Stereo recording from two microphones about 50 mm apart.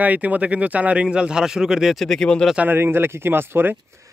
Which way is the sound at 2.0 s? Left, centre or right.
Centre.